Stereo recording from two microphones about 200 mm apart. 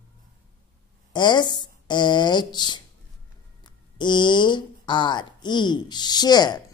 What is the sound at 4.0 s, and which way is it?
A woman's voice, 25° left (ahead or behind).